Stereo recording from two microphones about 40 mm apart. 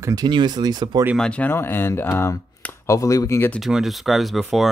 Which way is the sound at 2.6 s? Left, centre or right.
Left.